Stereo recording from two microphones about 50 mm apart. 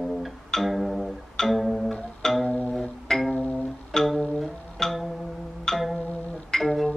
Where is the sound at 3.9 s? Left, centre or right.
Centre.